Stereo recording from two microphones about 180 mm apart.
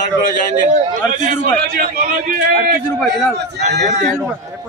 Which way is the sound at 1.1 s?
45° right (ahead or behind).